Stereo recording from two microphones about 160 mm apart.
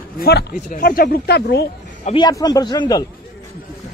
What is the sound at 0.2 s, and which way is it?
Speech, 80° left.